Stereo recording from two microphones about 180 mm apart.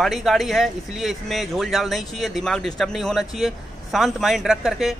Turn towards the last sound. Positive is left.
turn(degrees=0)  # may be behind; listen again after turning